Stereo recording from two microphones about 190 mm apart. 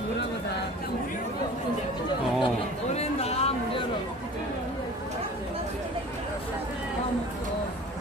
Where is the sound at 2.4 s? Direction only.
35° left (ahead or behind).